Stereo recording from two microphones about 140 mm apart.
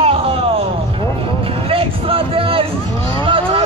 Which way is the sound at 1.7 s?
40° right (ahead or behind).